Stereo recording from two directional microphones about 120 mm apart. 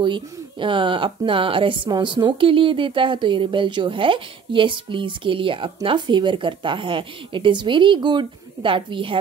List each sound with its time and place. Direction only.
0.0 s speech: 40° right (ahead or behind)